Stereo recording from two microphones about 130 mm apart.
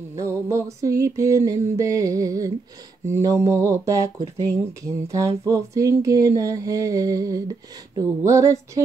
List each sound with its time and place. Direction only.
0.1 s music: 20° right (ahead or behind)